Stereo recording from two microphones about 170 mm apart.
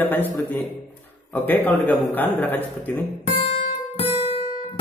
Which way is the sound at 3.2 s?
35° left (ahead or behind).